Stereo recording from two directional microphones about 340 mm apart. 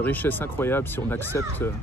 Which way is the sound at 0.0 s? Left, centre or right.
Centre.